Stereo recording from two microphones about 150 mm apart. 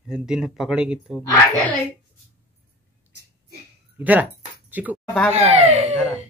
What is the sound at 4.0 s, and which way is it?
Speech, 10° right (ahead or behind).